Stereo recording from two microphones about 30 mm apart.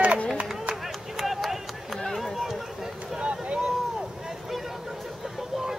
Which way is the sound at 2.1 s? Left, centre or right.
Centre.